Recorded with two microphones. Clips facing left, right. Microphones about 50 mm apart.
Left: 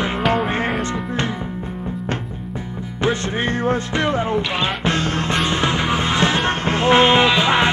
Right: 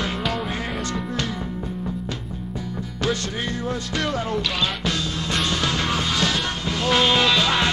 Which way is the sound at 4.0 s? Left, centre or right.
Left.